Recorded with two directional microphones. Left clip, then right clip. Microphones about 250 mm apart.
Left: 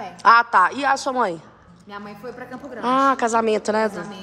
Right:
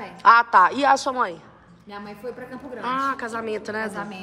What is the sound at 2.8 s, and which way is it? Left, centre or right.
A woman's voice, centre.